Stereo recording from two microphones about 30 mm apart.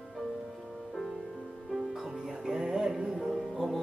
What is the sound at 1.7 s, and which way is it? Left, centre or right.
Music, centre.